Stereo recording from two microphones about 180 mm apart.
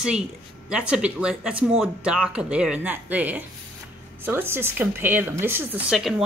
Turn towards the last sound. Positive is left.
turn(degrees=0)  # may be behind; listen again after turning